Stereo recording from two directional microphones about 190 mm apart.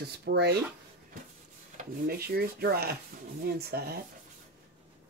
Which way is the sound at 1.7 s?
55° right (ahead or behind).